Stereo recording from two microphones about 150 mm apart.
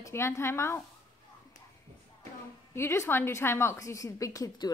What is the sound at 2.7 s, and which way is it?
A woman's voice, 20° left (ahead or behind).